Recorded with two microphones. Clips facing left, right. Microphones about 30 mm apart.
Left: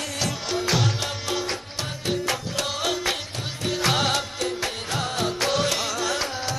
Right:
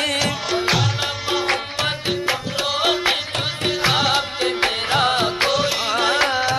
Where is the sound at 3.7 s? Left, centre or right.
Right.